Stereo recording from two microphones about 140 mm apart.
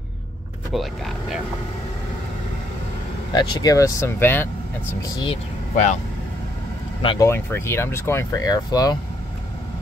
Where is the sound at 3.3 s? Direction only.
30° left (ahead or behind); by 4.9 s 15° left (ahead or behind).